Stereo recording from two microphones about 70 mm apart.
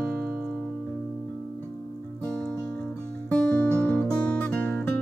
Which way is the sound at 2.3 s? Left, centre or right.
Centre.